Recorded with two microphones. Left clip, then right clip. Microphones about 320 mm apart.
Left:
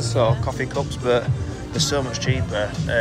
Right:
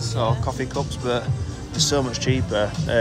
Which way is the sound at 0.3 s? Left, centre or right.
Centre.